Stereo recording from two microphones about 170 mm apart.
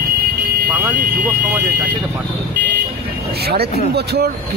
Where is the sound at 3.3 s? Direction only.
70° right (ahead or behind).